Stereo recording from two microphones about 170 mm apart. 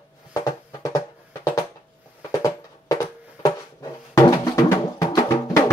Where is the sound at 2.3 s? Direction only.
20° left (ahead or behind).